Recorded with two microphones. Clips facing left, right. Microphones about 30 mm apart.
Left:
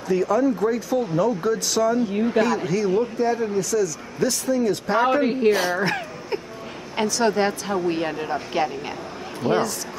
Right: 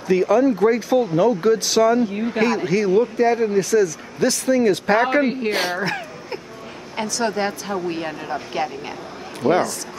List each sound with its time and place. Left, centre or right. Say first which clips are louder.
0.1 s speech: right 4 dB; right
0.9 s speech: right 4 dB; right
1.4 s speech: right 5 dB; right
2.0 s a woman's voice: left 1 dB; centre
2.3 s speech: right 4 dB; right
5.2 s a woman's voice: left 1 dB; centre
5.5 s speech: left 2 dB; right
5.8 s a sound: left 1 dB; centre
7.0 s speech: left 2 dB; centre